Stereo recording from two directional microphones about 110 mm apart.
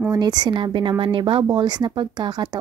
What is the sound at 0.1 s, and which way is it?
Speech, 40° right (ahead or behind).